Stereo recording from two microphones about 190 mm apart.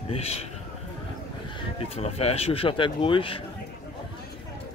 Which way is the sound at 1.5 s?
30° left (ahead or behind).